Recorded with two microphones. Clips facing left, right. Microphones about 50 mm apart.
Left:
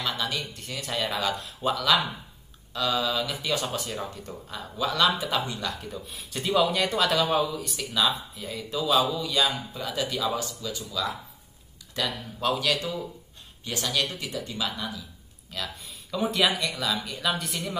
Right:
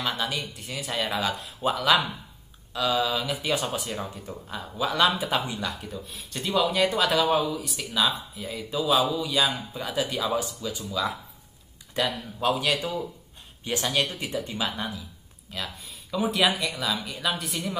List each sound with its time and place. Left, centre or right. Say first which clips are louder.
0.1 s speech: right 1 dB; centre
13.7 s speech: right 2 dB; right
15.5 s speech: even; centre